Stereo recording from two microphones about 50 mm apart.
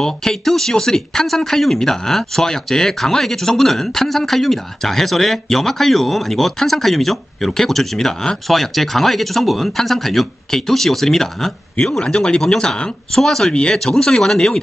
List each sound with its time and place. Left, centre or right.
0.0 s speech: centre
12.0 s speech: centre